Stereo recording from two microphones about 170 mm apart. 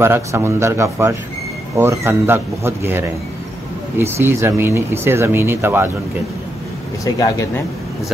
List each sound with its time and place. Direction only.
0.0 s speech: 15° right (ahead or behind)
7.2 s speech: 20° left (ahead or behind)